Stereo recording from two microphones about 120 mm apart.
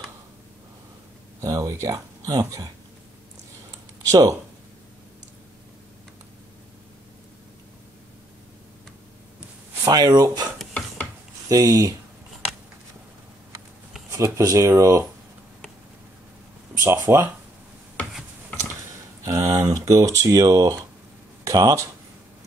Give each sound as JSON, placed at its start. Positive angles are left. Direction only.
{"t": 1.4, "sound": "speech", "side_deg": -25}
{"t": 3.7, "sound": "a sound", "side_deg": -30}
{"t": 9.8, "sound": "speech", "side_deg": -30}
{"t": 14.1, "sound": "speech", "side_deg": -25}
{"t": 16.8, "sound": "speech", "side_deg": -20}
{"t": 19.2, "sound": "speech", "side_deg": -30}